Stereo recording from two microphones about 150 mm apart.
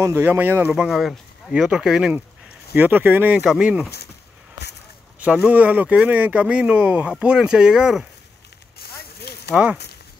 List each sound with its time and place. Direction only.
0.0 s speech: 15° right (ahead or behind)
5.2 s speech: 10° right (ahead or behind)
9.3 s a sound: 90° left